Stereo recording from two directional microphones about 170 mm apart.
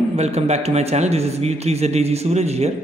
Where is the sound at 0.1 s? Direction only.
40° right (ahead or behind).